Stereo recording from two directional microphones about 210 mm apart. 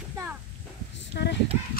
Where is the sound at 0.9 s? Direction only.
55° left (ahead or behind).